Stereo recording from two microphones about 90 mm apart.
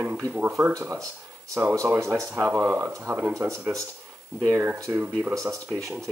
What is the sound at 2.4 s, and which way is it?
Speech, 15° right (ahead or behind).